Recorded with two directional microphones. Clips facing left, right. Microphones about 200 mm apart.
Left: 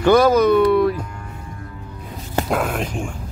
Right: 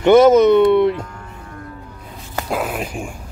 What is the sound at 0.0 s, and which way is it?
Speech, 25° right (ahead or behind).